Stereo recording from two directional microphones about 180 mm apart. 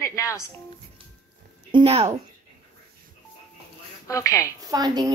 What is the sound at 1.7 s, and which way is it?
Speech, 35° right (ahead or behind).